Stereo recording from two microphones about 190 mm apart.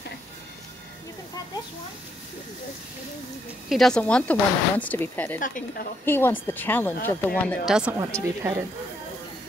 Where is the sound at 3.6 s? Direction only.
Centre (ahead or behind).